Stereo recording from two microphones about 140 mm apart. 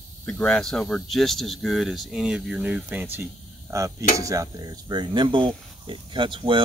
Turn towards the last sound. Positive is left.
turn(degrees=-35)  # may be behind; listen again after turning